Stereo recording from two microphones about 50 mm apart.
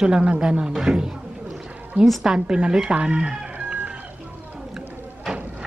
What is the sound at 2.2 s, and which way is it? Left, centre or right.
Speech, centre.